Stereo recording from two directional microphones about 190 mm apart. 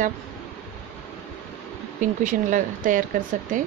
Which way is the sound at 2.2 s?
45° right (ahead or behind).